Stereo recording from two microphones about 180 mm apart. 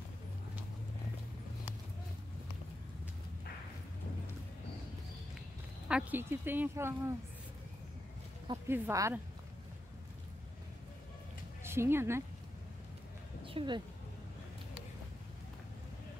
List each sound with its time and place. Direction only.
5.9 s speech: 5° right (ahead or behind)
8.6 s speech: 10° right (ahead or behind)
11.6 s speech: 15° right (ahead or behind)
13.4 s a sound: 30° right (ahead or behind)